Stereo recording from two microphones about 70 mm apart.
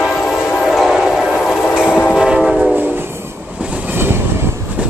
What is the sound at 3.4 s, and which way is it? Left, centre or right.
Train, centre.